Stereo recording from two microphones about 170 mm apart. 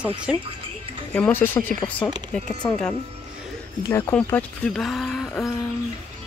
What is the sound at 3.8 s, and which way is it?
Speech, 20° left (ahead or behind).